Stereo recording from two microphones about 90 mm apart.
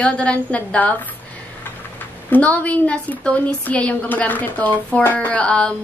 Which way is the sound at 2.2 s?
20° left (ahead or behind).